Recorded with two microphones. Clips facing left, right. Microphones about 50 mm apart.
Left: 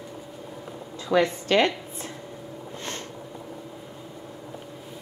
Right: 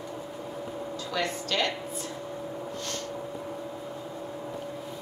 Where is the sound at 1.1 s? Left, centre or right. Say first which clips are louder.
Left 9 dB; left.